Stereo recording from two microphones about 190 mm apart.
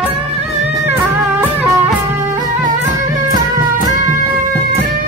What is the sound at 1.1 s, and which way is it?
Music, 15° right (ahead or behind).